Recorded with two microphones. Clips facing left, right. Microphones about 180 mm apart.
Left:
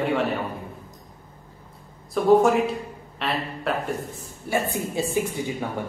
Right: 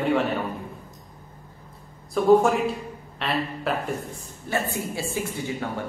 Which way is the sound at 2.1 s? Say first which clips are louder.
Left 1 dB; centre (ahead or behind).